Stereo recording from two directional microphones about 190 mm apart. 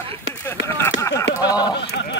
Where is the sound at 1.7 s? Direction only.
60° left (ahead or behind).